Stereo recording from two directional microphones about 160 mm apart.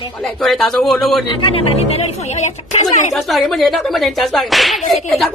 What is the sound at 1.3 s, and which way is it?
A woman's voice, 35° left (ahead or behind).